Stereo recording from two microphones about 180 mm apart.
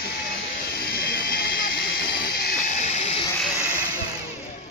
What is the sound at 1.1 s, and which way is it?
Music, 60° left (ahead or behind).